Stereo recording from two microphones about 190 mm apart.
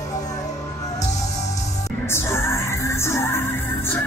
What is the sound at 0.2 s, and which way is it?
Music, 20° left (ahead or behind).